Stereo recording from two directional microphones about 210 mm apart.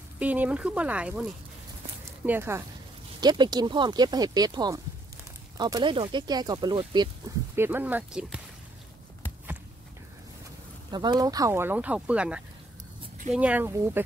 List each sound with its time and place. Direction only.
0.2 s speech: 5° right (ahead or behind)
7.5 s speech: 10° right (ahead or behind)
10.9 s speech: 20° right (ahead or behind)